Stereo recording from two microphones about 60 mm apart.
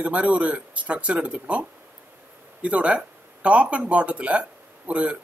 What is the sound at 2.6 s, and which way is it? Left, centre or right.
Speech, right.